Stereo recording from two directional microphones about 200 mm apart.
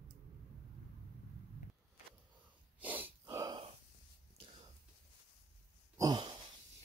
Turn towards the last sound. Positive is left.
turn(degrees=-20)  # may be behind; listen again after turning